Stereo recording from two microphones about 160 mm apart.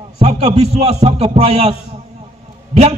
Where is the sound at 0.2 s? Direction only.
40° right (ahead or behind).